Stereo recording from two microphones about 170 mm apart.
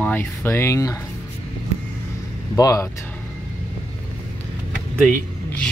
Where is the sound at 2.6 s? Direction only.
20° left (ahead or behind).